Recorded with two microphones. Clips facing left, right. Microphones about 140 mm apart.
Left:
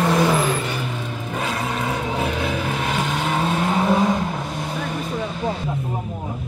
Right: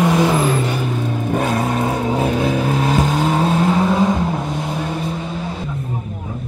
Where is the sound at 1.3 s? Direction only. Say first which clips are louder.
Right 6 dB; 50° right (ahead or behind).